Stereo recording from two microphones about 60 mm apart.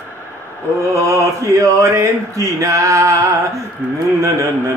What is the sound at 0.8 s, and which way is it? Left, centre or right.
Speech, right.